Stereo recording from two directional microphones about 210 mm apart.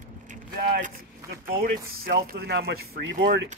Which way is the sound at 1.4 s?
45° right (ahead or behind).